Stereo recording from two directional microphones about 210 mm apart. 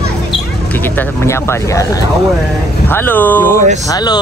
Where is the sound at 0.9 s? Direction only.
10° left (ahead or behind).